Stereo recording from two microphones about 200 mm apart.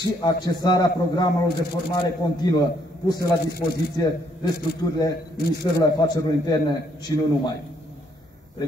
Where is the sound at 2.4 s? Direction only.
20° left (ahead or behind).